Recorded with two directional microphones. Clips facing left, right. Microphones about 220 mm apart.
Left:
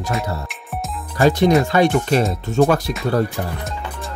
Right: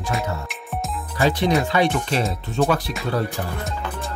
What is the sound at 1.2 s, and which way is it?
Music, 45° left (ahead or behind).